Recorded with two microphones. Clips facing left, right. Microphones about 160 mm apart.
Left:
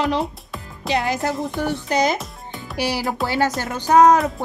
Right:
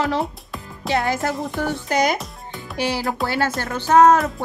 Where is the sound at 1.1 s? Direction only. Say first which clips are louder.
Left 1 dB; centre (ahead or behind).